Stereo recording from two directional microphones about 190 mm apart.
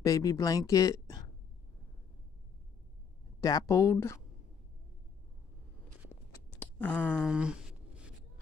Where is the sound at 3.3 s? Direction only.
20° left (ahead or behind).